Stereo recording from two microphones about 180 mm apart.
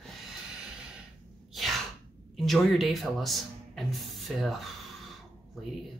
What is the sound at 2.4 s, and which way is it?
Speech, centre (ahead or behind).